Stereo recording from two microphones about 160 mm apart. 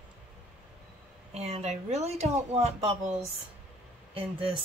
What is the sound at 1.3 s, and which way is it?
Speech, 40° right (ahead or behind).